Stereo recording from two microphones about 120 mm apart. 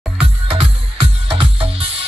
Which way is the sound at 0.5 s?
50° right (ahead or behind).